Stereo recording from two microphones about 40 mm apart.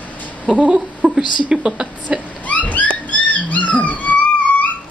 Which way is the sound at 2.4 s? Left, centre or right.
Left.